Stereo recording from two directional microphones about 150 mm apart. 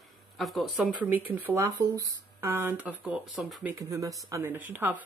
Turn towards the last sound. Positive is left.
turn(degrees=-10)  # may be behind; listen again after turning